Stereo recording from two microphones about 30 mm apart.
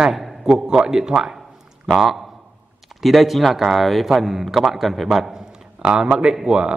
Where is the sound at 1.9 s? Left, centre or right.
Centre.